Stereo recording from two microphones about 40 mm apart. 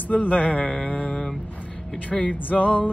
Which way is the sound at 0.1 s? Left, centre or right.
Left.